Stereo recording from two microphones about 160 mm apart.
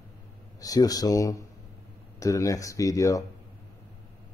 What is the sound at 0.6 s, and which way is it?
Speech, 25° left (ahead or behind).